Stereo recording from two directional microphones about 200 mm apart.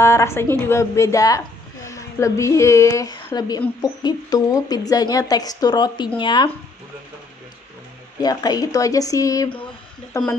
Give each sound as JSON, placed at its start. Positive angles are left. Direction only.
{"t": 0.0, "sound": "a woman's voice", "side_deg": 15}
{"t": 8.2, "sound": "speech", "side_deg": 20}